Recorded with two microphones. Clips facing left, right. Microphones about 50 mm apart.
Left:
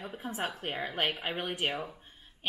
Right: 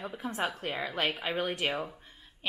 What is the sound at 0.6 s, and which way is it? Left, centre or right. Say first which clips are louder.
A woman's voice: right 1 dB; right.